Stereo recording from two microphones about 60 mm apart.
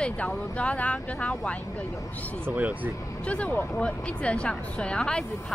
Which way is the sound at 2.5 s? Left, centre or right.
Right.